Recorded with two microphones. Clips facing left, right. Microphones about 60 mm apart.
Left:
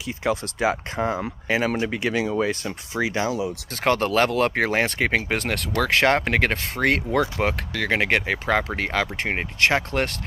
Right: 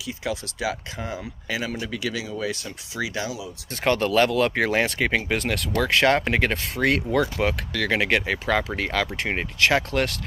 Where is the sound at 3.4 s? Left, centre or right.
Left.